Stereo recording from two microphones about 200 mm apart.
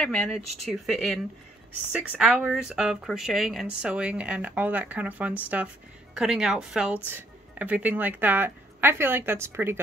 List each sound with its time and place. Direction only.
0.0 s a woman's voice: 5° left (ahead or behind); by 9.8 s 10° right (ahead or behind)